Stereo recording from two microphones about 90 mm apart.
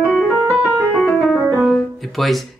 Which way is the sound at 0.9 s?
10° left (ahead or behind).